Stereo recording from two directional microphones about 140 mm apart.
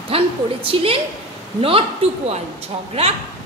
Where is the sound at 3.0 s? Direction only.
45° right (ahead or behind).